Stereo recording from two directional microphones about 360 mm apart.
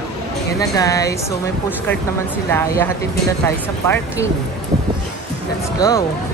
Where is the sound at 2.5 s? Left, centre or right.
Centre.